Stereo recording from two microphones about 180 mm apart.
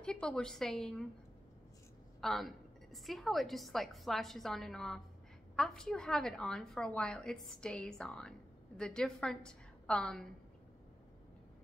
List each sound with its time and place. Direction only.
0.0 s a woman's voice: 5° left (ahead or behind)
2.2 s a woman's voice: centre (ahead or behind)